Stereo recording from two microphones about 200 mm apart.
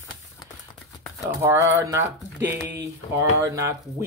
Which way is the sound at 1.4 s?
15° right (ahead or behind).